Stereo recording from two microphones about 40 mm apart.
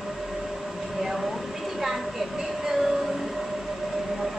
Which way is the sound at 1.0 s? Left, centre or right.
Centre.